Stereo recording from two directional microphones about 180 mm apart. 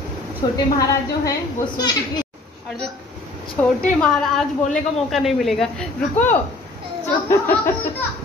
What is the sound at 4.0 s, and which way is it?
Speech, 5° left (ahead or behind).